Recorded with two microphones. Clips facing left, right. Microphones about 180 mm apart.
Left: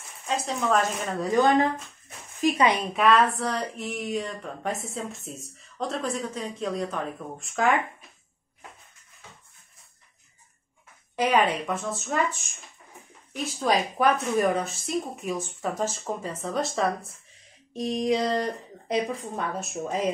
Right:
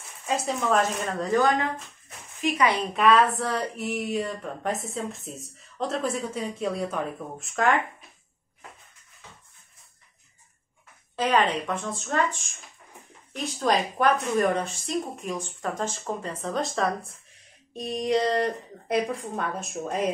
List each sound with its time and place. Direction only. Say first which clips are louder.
0.5 s speech: even; centre (ahead or behind)
2.4 s a woman's voice: left 2 dB; 30° left (ahead or behind)
2.9 s speech: right 1 dB; centre (ahead or behind)
11.1 s a woman's voice: left 1 dB; 10° left (ahead or behind)
13.3 s speech: even; 5° left (ahead or behind)